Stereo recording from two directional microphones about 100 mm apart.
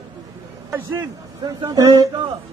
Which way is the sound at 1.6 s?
40° right (ahead or behind).